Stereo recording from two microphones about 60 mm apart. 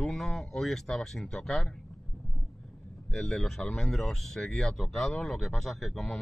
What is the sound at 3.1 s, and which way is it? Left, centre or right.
Speech, centre.